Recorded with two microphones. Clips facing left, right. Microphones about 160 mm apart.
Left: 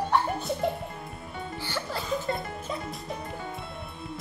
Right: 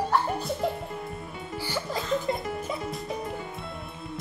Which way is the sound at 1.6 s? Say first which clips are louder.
Right 4 dB; 15° right (ahead or behind).